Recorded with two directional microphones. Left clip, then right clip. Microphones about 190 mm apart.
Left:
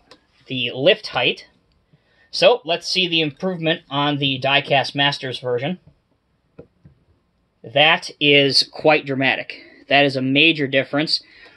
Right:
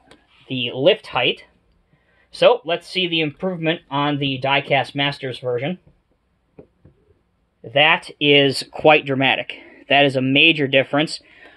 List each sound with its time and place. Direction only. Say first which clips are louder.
0.5 s speech: even; 20° right (ahead or behind)
7.6 s speech: even; 20° right (ahead or behind)